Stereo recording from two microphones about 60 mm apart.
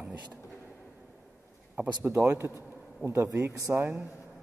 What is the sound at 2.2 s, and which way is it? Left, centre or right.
A man's voice, right.